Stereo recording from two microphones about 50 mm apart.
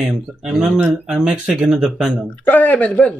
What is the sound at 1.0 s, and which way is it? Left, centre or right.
Speech, centre.